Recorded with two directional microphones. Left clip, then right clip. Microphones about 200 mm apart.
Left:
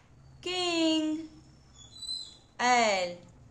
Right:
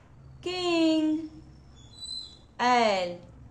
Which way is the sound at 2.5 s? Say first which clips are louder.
Right 2 dB; centre (ahead or behind).